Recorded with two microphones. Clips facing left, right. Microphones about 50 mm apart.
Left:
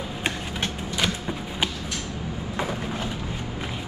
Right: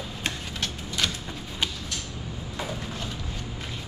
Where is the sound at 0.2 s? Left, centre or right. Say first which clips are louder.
Left 3 dB; centre.